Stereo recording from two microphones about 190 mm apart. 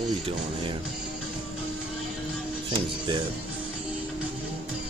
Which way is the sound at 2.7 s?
25° right (ahead or behind).